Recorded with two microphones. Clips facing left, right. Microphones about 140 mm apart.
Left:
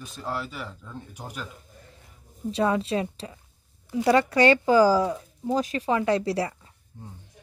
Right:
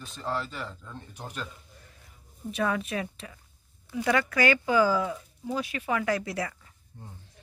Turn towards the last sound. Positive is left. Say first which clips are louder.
# left 6 dB
turn(degrees=30)  # may be behind; listen again after turning